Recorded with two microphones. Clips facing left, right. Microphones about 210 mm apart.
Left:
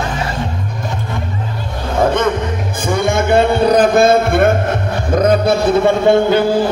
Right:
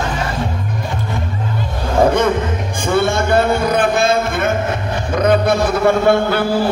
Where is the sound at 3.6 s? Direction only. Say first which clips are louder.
Left 5 dB; 35° left (ahead or behind).